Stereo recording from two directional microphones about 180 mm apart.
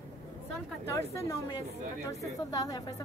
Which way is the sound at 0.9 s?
15° left (ahead or behind).